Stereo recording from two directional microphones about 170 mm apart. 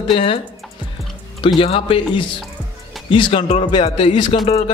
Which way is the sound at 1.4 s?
30° left (ahead or behind).